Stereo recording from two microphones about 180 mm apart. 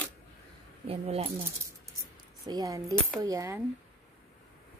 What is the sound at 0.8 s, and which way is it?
Speech, 35° right (ahead or behind).